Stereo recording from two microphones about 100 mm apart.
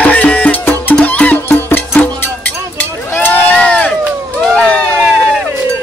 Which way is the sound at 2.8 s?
20° left (ahead or behind).